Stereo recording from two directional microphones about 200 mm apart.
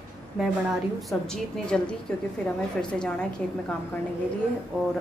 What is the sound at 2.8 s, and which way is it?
Speech, 5° left (ahead or behind).